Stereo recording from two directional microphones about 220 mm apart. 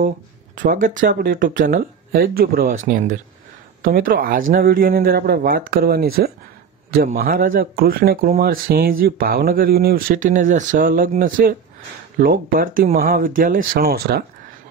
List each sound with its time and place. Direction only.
0.6 s speech: 35° right (ahead or behind)